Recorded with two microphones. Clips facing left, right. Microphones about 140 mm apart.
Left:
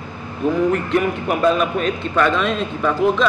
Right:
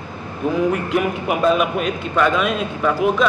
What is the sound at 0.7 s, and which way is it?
Speech, 5° right (ahead or behind).